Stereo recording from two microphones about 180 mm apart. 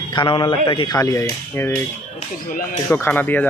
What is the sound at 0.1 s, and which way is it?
Speech, 25° left (ahead or behind).